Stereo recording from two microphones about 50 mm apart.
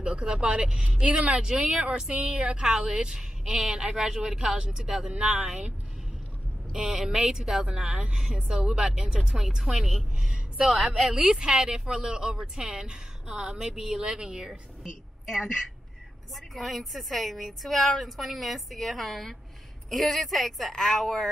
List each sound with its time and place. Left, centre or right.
0.0 s speech: centre
3.8 s speech: right
5.1 s speech: right
6.7 s speech: centre
16.3 s a woman's voice: centre